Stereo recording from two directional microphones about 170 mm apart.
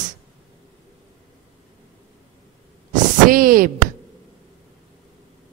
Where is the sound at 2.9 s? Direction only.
55° right (ahead or behind).